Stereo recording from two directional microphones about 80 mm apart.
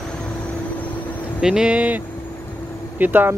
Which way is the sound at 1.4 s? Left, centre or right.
Centre.